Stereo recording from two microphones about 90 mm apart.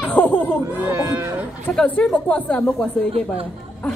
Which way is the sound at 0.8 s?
40° right (ahead or behind).